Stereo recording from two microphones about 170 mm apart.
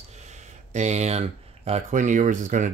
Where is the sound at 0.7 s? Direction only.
40° right (ahead or behind).